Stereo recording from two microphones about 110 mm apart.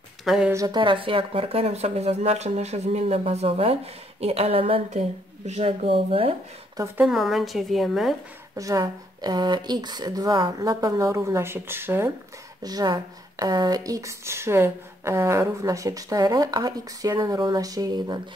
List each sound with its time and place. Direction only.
0.2 s speech: 5° right (ahead or behind)
0.7 s speech: 45° right (ahead or behind)
7.1 s a woman's voice: centre (ahead or behind)
8.5 s speech: 30° right (ahead or behind)
12.6 s speech: 35° right (ahead or behind)